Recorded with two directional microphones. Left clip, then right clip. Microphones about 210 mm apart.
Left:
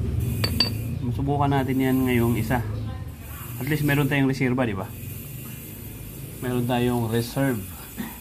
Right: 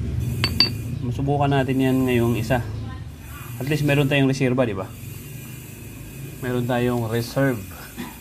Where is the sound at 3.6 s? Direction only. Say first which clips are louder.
Right 3 dB; 15° right (ahead or behind).